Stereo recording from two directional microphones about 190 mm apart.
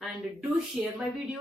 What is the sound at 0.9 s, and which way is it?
Speech, 5° right (ahead or behind).